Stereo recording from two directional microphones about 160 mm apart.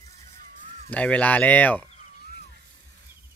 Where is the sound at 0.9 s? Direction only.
10° left (ahead or behind).